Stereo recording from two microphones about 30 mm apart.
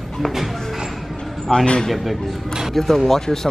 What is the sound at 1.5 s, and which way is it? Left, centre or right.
Speech, left.